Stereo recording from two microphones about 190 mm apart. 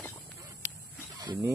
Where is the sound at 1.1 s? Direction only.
20° right (ahead or behind).